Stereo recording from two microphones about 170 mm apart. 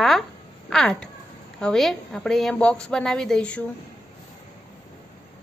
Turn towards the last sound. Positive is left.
turn(degrees=5)  # may be behind; listen again after turning